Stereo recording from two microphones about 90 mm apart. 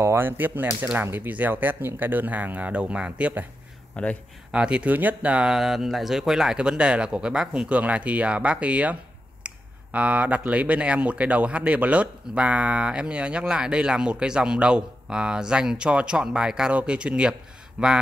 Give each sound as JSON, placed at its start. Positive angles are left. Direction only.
{"t": 0.0, "sound": "speech", "side_deg": -25}
{"t": 3.9, "sound": "speech", "side_deg": 15}
{"t": 4.5, "sound": "speech", "side_deg": -10}
{"t": 9.5, "sound": "a sound", "side_deg": -15}
{"t": 9.9, "sound": "speech", "side_deg": -15}